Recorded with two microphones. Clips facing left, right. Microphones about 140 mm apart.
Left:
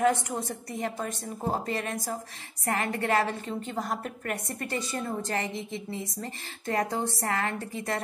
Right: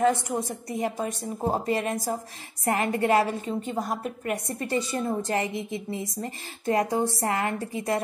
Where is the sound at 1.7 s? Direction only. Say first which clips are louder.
Right 5 dB; 30° right (ahead or behind); by 4.6 s 10° right (ahead or behind).